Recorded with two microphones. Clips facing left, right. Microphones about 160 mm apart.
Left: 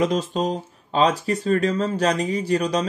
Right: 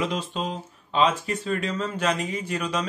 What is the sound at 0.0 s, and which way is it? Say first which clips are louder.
Speech: left 6 dB; 40° left (ahead or behind).